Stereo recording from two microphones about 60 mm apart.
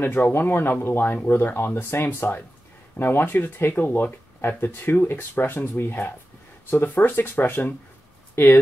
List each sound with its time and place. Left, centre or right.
0.0 s speech: left
8.4 s speech: left